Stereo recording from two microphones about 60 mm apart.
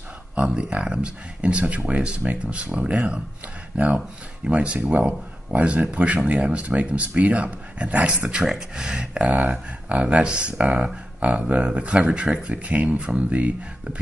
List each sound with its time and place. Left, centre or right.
0.4 s speech: centre